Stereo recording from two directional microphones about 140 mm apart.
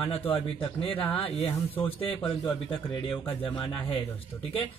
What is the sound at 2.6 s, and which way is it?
Speech, 40° left (ahead or behind).